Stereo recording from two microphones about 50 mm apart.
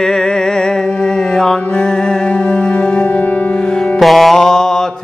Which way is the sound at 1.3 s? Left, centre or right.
Centre.